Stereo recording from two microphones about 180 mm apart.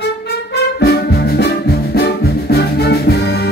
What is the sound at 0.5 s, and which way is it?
Music, 65° left (ahead or behind).